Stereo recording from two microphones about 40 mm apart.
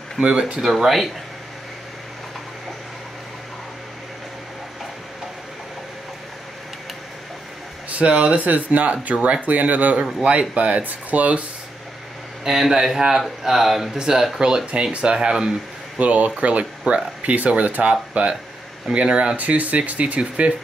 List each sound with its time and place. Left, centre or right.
0.2 s speech: right
0.6 s speech: centre
7.9 s speech: right
12.4 s speech: centre
13.9 s speech: centre
14.7 s speech: right
16.0 s speech: right